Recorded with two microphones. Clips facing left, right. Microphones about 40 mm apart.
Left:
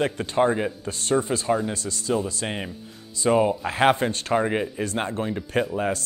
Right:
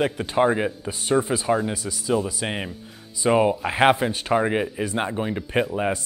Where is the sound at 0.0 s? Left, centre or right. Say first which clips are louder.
Right 1 dB; centre.